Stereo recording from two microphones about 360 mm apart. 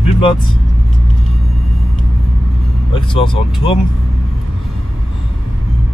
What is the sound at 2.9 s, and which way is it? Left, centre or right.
Speech, centre.